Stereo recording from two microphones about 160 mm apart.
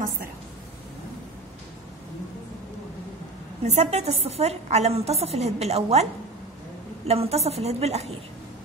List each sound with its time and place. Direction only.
3.6 s a woman's voice: 45° right (ahead or behind)
7.1 s a woman's voice: 40° right (ahead or behind)